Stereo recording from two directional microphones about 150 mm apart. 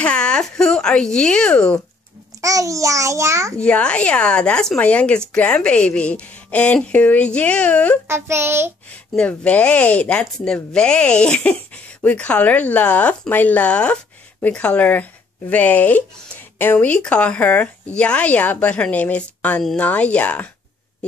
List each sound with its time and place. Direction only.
0.0 s speech: 5° left (ahead or behind)
2.4 s a child's voice: 20° right (ahead or behind)
3.5 s speech: 5° left (ahead or behind)
8.1 s a child's voice: 15° right (ahead or behind)
8.9 s speech: 10° left (ahead or behind)